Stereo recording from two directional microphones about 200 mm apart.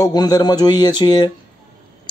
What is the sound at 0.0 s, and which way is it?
Speech, 20° left (ahead or behind).